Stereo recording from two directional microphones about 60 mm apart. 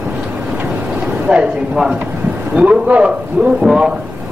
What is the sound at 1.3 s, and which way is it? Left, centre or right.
Speech, centre.